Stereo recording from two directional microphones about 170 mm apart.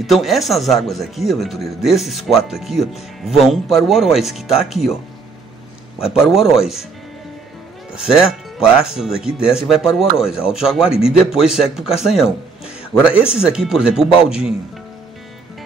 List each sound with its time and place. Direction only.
0.0 s speech: centre (ahead or behind)
6.2 s speech: 5° right (ahead or behind)
7.9 s speech: 5° right (ahead or behind)
13.3 s speech: 5° right (ahead or behind)